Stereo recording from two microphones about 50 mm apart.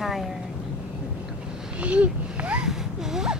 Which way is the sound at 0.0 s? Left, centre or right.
Centre.